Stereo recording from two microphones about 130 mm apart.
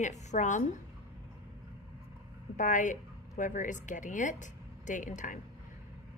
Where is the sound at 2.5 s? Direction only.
75° left (ahead or behind).